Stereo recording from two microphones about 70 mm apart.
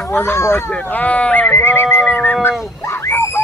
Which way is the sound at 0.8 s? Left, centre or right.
Left.